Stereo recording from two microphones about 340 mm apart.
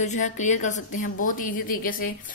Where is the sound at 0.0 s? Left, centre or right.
Left.